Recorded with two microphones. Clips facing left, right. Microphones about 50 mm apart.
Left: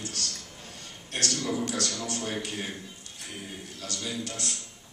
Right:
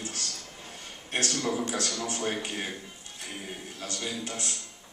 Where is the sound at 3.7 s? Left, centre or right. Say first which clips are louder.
Left 1 dB; right.